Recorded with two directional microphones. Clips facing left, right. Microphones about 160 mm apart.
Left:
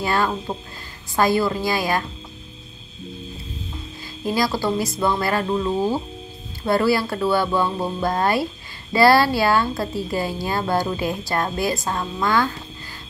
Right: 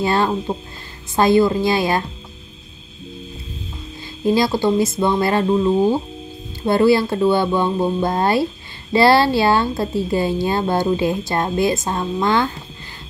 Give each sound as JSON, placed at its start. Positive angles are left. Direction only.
{"t": 0.0, "sound": "speech", "side_deg": -25}
{"t": 4.3, "sound": "speech", "side_deg": -25}